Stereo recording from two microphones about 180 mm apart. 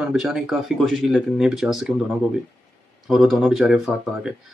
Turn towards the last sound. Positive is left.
turn(degrees=0)  # may be behind; listen again after turning